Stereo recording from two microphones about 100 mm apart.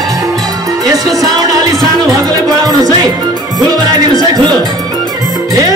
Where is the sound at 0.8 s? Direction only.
40° right (ahead or behind).